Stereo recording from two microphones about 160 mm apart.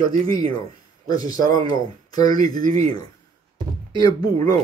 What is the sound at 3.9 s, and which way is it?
Speech, 25° left (ahead or behind).